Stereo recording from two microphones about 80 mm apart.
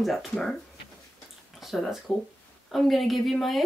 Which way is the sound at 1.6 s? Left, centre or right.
Centre.